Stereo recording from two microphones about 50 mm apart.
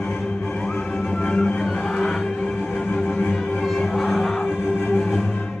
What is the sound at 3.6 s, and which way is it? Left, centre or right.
Music, centre.